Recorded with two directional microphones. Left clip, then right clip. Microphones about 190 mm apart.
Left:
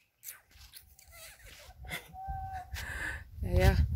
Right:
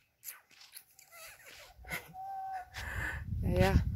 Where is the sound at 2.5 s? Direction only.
5° left (ahead or behind).